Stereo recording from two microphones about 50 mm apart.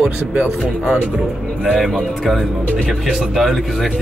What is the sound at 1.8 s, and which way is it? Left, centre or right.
Speech, centre.